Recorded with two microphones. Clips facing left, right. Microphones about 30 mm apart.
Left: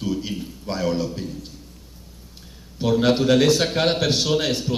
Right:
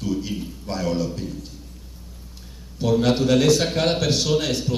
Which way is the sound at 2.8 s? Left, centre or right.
Centre.